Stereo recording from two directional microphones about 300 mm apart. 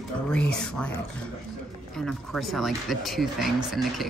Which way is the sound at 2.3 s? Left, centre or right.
Centre.